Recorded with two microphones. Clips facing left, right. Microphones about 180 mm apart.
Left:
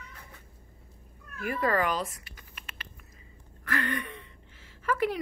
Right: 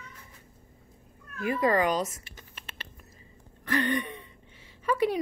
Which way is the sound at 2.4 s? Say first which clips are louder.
Right 2 dB; 30° right (ahead or behind).